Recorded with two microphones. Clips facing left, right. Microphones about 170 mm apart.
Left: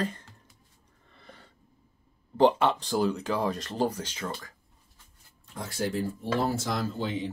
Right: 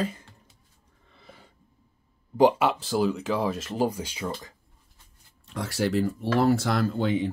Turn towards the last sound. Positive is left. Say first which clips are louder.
# right 6 dB
turn(degrees=-60)  # may be behind; listen again after turning